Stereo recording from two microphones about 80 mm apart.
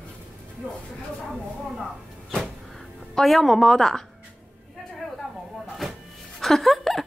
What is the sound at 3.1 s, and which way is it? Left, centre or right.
Speech, centre.